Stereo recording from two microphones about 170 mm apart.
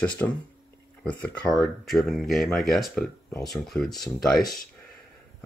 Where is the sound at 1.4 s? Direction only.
Centre (ahead or behind).